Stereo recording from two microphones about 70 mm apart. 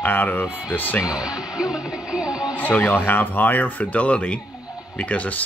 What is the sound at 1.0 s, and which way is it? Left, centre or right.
Speech, centre.